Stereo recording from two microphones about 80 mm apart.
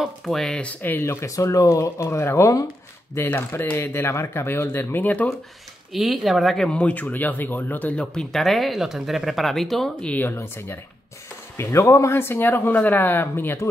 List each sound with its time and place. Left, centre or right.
0.0 s speech: centre; by 1.2 s left
1.2 s speech: left; by 5.3 s centre
5.9 s speech: centre
10.0 s speech: left